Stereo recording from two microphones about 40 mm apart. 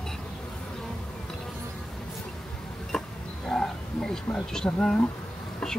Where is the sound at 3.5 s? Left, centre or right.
Centre.